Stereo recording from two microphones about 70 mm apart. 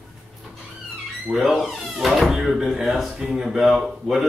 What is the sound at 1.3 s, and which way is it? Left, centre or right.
A man's voice, centre.